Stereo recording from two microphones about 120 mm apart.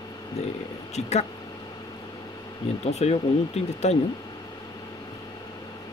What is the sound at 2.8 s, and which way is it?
Speech, 65° left (ahead or behind).